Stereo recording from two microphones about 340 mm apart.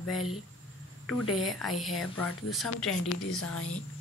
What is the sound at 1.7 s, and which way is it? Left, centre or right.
Speech, centre.